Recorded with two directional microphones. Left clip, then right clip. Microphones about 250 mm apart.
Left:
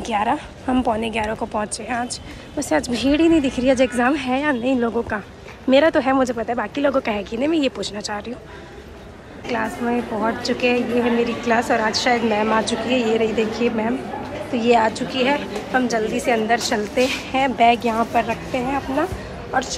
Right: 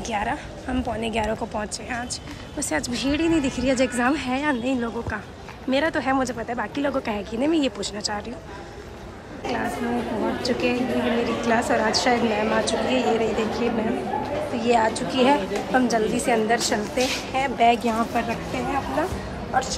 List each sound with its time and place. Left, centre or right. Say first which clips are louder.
0.0 s a woman's voice: left 6 dB; centre
9.5 s a woman's voice: left 4 dB; centre